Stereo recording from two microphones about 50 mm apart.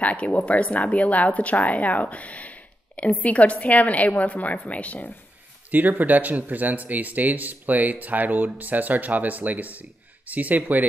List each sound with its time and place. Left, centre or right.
0.0 s speech: left
5.7 s speech: right